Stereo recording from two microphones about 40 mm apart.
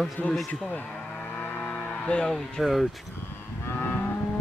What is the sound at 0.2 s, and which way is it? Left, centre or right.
Speech, left.